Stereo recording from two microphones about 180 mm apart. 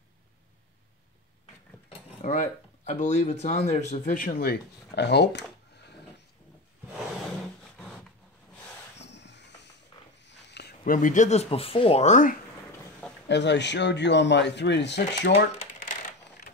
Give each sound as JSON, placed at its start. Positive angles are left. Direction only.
{"t": 2.0, "sound": "speech", "side_deg": 40}
{"t": 7.7, "sound": "a sound", "side_deg": 5}
{"t": 9.0, "sound": "a sound", "side_deg": 75}
{"t": 10.2, "sound": "dog", "side_deg": 70}
{"t": 11.0, "sound": "speech", "side_deg": 45}
{"t": 13.3, "sound": "speech", "side_deg": 75}
{"t": 15.6, "sound": "coin", "side_deg": 45}